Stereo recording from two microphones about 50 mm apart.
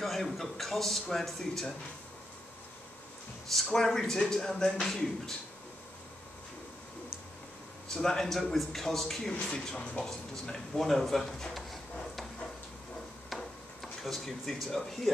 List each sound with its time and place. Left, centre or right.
0.0 s a man's voice: centre
3.4 s speech: centre
7.9 s a man's voice: centre
9.3 s speech: centre
13.3 s a sound: centre